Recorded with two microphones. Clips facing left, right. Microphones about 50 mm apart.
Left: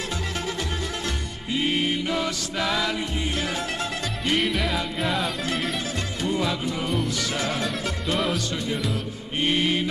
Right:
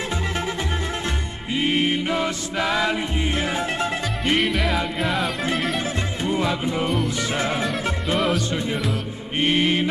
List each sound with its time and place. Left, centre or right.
1.5 s music: centre
4.4 s music: centre
6.2 s music: right
7.3 s mantra: right
9.4 s mantra: right